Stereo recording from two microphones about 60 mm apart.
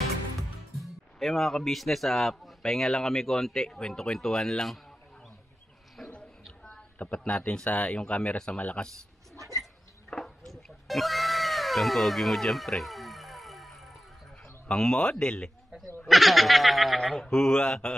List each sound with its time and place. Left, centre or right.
0.7 s a man's voice: centre
6.0 s a sound: centre
7.0 s speech: left
10.0 s cat: centre
14.4 s a man's voice: centre
16.1 s a man's voice: centre